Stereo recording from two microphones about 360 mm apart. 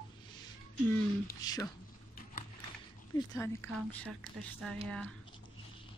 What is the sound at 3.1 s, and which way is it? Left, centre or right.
Speech, centre.